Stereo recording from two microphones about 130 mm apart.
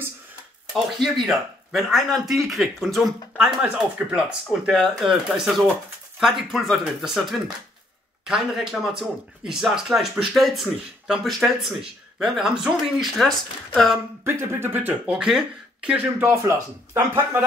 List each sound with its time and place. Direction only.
0.9 s speech: centre (ahead or behind)
14.2 s speech: 20° right (ahead or behind)